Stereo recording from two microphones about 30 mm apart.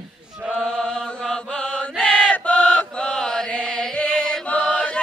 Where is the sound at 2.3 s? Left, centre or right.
Left.